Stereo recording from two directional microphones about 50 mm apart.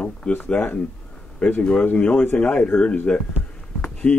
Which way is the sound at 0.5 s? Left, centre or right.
Left.